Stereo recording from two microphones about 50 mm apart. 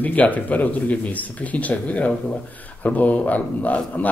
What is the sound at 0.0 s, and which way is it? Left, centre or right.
Speech, left.